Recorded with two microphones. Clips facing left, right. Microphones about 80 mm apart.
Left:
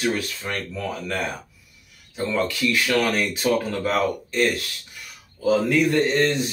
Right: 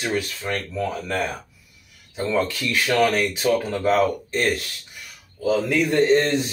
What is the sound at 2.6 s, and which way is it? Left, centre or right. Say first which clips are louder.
Speech: right 2 dB; right.